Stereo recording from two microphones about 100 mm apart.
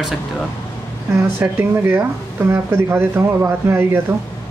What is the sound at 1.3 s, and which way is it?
Speech, 20° right (ahead or behind).